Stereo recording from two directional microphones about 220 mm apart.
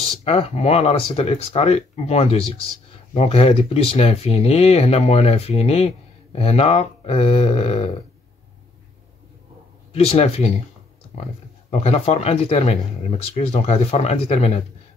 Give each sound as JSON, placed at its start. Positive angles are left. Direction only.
{"t": 0.0, "sound": "speech", "side_deg": 25}
{"t": 9.9, "sound": "speech", "side_deg": 25}